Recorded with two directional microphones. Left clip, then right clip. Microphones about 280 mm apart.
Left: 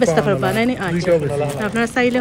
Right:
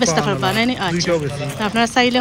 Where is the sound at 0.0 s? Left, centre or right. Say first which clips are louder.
Left 1 dB; centre.